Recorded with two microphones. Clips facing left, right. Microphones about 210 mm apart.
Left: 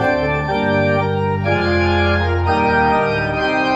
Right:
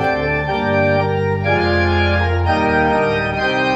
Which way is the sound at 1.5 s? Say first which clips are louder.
Left 1 dB; 25° right (ahead or behind).